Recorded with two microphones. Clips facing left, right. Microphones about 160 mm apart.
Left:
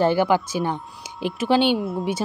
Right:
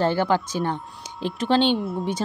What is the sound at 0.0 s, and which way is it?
Speech, 10° left (ahead or behind).